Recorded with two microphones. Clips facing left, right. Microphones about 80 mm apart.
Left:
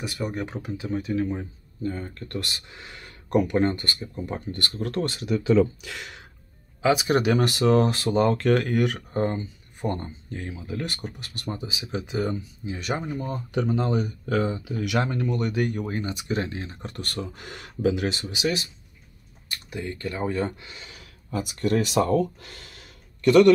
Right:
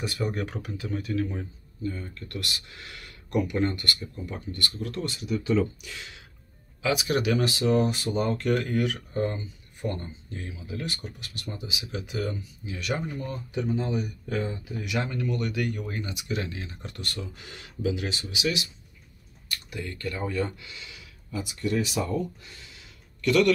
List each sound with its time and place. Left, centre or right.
0.0 s speech: centre
0.5 s speech: left
1.8 s speech: left
4.3 s speech: left
6.8 s speech: left
7.7 s speech: left
9.1 s speech: left
13.5 s speech: left
15.0 s speech: left
19.5 s speech: left
23.2 s speech: left